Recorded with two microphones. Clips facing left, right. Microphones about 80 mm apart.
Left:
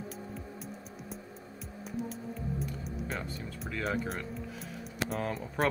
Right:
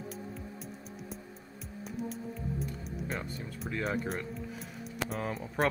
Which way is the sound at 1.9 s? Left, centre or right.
Centre.